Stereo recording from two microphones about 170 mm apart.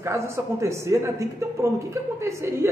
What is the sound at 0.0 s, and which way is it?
A man's voice, 15° right (ahead or behind).